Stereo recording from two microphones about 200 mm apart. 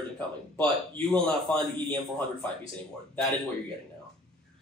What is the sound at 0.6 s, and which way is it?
Speech, 5° left (ahead or behind).